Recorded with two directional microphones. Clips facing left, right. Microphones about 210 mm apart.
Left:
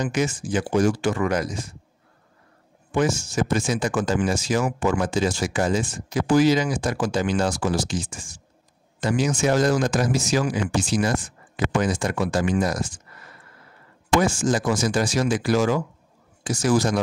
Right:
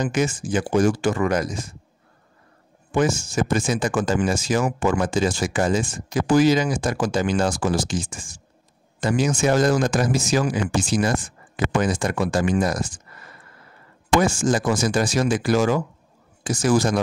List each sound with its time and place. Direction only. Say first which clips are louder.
0.0 s speech: right 2 dB; 50° right (ahead or behind)
2.9 s speech: right 1 dB; 50° right (ahead or behind)
14.2 s speech: right 1 dB; 50° right (ahead or behind)